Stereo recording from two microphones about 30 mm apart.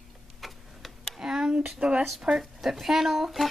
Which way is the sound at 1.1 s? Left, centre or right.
Right.